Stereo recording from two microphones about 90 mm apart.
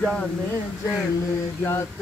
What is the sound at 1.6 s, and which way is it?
Music, 25° left (ahead or behind).